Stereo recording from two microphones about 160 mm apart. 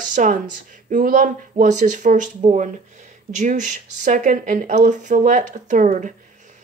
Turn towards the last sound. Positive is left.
turn(degrees=-50)  # may be behind; listen again after turning